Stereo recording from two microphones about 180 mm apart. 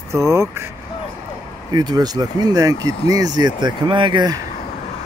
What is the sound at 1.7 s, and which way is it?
Speech, 20° right (ahead or behind).